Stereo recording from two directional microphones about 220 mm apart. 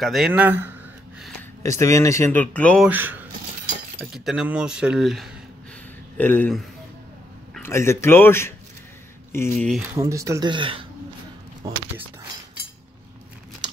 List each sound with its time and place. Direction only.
0.0 s speech: centre (ahead or behind)
1.6 s speech: 15° left (ahead or behind)
2.9 s speech: 10° right (ahead or behind); by 9.7 s 10° left (ahead or behind)
9.9 s speech: 15° right (ahead or behind)